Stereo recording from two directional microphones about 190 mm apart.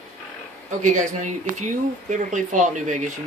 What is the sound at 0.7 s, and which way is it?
Speech, 40° right (ahead or behind).